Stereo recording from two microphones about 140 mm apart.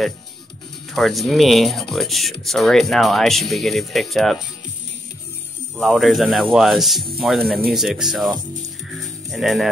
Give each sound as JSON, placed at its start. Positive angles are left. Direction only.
{"t": 0.9, "sound": "speech", "side_deg": 0}
{"t": 5.8, "sound": "speech", "side_deg": 0}
{"t": 9.3, "sound": "speech", "side_deg": 0}